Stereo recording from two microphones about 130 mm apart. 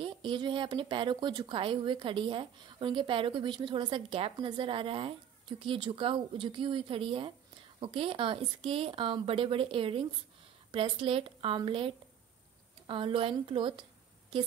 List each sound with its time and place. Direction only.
0.0 s a woman's voice: 40° right (ahead or behind)